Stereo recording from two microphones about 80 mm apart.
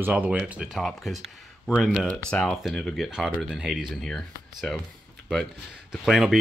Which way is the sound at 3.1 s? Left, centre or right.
Centre.